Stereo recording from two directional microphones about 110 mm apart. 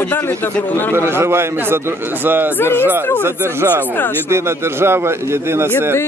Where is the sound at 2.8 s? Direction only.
20° right (ahead or behind).